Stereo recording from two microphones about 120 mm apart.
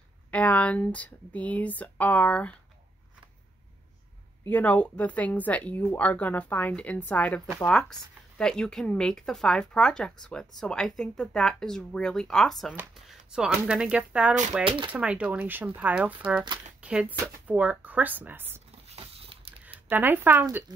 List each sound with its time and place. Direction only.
0.3 s speech: 10° left (ahead or behind)
4.5 s speech: 10° left (ahead or behind); by 14.4 s 10° right (ahead or behind)
14.6 s speech: 45° right (ahead or behind)
14.9 s speech: 10° right (ahead or behind)
18.9 s a sound: 55° right (ahead or behind)
19.9 s speech: 15° right (ahead or behind)